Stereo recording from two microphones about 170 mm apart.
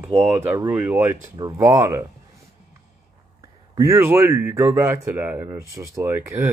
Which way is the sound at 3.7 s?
15° right (ahead or behind).